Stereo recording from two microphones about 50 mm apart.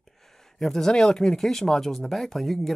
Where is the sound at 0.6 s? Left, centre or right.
Centre.